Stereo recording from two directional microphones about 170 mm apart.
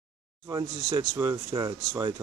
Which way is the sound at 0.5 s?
20° right (ahead or behind).